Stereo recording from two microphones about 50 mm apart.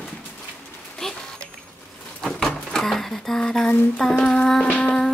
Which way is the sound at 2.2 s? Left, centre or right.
Centre.